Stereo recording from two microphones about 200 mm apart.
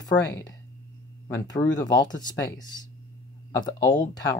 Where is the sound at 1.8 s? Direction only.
20° left (ahead or behind).